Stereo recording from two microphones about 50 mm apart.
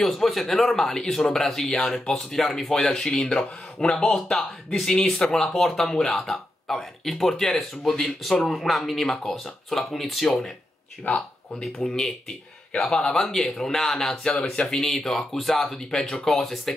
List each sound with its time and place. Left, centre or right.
0.0 s speech: centre
4.3 s speech: centre
11.1 s speech: left
11.6 s speech: centre